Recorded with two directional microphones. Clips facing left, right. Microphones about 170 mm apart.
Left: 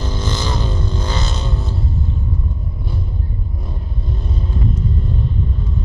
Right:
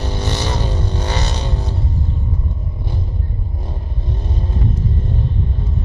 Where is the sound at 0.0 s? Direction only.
70° right (ahead or behind).